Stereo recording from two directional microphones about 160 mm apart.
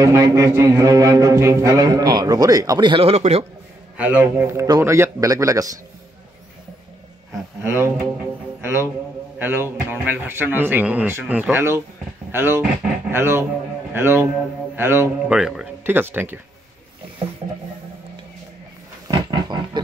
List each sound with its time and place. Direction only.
0.0 s a man's voice: 20° right (ahead or behind); by 3.4 s 40° right (ahead or behind)
3.9 s a man's voice: 10° right (ahead or behind)
7.6 s speech: 15° right (ahead or behind)
15.3 s speech: 5° right (ahead or behind)
19.0 s roaring cats: 25° right (ahead or behind)